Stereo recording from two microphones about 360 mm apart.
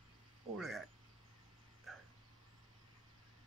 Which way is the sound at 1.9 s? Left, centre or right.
Centre.